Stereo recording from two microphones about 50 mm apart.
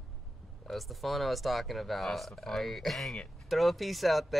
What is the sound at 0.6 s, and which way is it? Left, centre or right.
Speech, centre.